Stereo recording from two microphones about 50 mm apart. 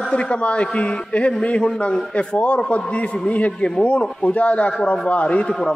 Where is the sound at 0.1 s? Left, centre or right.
Left.